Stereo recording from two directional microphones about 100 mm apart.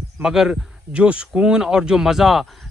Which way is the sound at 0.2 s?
5° right (ahead or behind).